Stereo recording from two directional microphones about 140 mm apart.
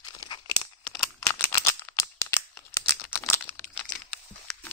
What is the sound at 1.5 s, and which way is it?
Rattle, 25° left (ahead or behind).